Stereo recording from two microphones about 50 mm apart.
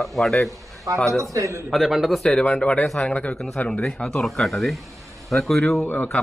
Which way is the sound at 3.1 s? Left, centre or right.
Left.